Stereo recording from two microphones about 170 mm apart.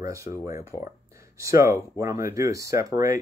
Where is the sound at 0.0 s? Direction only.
20° right (ahead or behind).